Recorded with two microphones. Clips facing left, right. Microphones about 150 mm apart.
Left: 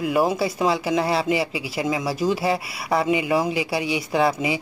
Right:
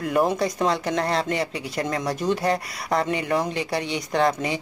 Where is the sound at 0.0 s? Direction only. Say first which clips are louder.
Left 1 dB; 5° left (ahead or behind).